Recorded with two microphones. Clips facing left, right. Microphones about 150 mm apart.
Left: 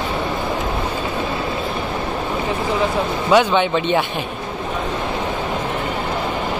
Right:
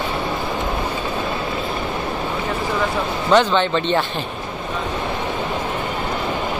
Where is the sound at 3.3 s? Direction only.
10° left (ahead or behind).